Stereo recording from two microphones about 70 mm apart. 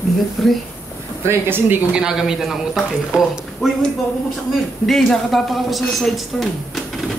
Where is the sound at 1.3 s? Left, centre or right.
Right.